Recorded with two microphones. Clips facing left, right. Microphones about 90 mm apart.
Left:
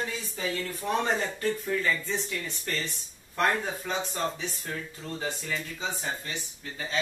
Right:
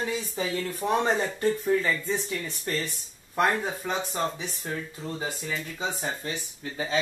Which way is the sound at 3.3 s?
10° right (ahead or behind).